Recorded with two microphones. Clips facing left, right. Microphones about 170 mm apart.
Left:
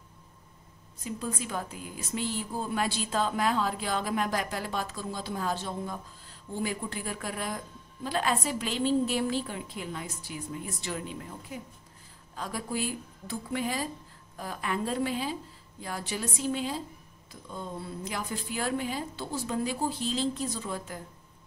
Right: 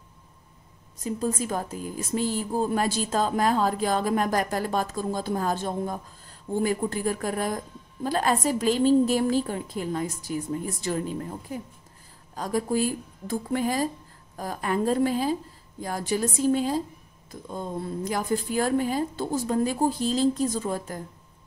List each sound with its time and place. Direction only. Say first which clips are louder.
1.0 s a woman's voice: right 7 dB; 40° right (ahead or behind)